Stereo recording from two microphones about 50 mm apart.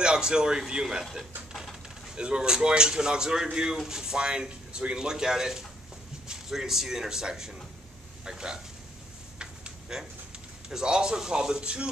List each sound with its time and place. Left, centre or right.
0.0 s speech: centre
2.1 s speech: centre
9.4 s a sound: centre
10.7 s speech: centre